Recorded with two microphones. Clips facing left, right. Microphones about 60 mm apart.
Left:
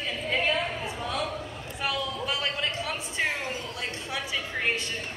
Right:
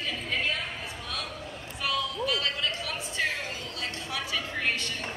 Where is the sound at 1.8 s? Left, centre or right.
Left.